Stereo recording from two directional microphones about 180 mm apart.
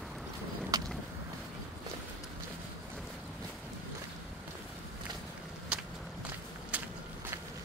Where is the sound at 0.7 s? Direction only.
20° right (ahead or behind).